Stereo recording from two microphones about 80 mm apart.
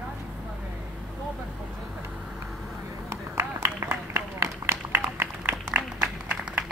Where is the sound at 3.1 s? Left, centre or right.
Right.